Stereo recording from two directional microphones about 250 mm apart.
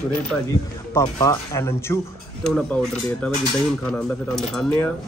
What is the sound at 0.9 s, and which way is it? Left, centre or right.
Speech, centre.